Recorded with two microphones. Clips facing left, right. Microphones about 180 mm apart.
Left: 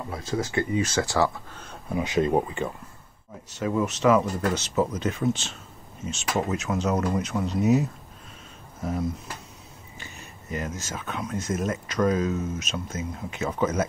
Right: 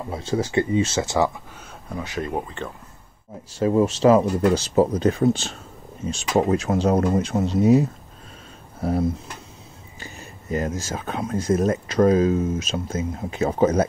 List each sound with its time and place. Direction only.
0.1 s speech: 30° right (ahead or behind)
1.9 s speech: 15° left (ahead or behind)
3.5 s speech: 30° right (ahead or behind)
8.8 s speech: 35° right (ahead or behind)